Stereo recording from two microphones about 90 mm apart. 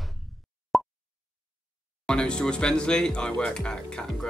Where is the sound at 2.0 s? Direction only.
10° left (ahead or behind).